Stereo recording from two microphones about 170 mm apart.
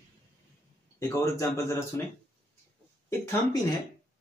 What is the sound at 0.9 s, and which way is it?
Speech, 20° left (ahead or behind).